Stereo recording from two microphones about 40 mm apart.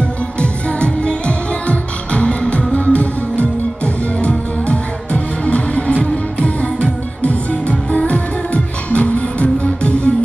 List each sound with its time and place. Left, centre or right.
0.4 s music: left